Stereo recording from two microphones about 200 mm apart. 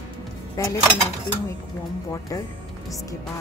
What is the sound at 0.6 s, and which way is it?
Dishes, 15° left (ahead or behind).